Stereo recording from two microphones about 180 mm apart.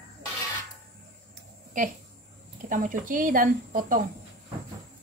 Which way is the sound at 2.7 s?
45° right (ahead or behind).